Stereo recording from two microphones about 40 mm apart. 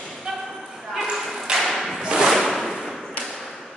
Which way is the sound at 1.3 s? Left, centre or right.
Centre.